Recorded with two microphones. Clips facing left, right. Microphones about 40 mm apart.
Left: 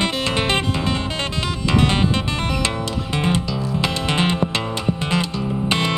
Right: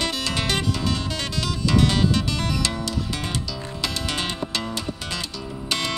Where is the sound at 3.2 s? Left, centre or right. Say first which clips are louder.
Left 8 dB; left.